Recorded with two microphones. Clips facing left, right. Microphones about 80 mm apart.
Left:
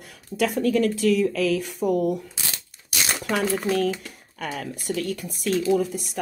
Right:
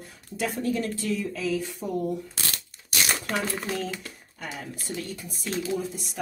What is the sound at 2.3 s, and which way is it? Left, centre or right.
Shuffling cards, centre.